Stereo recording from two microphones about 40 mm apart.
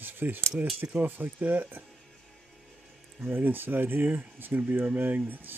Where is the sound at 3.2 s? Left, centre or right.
Right.